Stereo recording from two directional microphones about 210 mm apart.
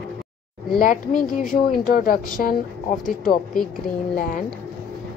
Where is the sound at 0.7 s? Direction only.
40° left (ahead or behind).